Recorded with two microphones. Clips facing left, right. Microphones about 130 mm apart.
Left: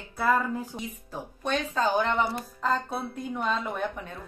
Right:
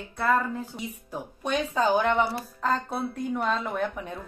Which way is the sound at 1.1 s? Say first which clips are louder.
Right 1 dB; 15° right (ahead or behind).